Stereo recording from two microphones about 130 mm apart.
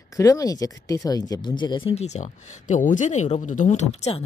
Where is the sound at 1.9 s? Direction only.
60° left (ahead or behind).